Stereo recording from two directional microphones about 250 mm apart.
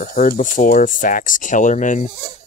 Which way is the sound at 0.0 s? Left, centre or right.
Left.